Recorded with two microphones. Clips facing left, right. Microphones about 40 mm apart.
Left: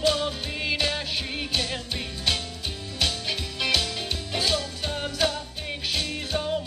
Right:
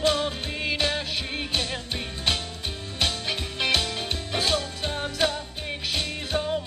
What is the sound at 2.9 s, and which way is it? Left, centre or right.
Music, right.